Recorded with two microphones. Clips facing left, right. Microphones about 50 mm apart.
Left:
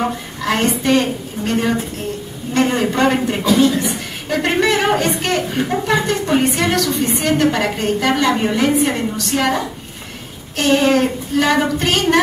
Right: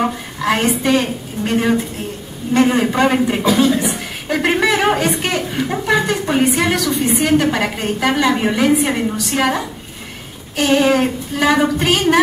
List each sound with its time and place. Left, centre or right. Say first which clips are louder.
0.0 s a woman's voice: right 2 dB; centre